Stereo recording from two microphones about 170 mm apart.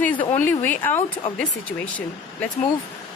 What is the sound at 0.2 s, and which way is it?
Speech, 10° left (ahead or behind).